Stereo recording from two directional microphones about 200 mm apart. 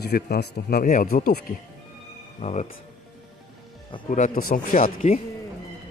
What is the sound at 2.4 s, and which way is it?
Speech, 35° left (ahead or behind).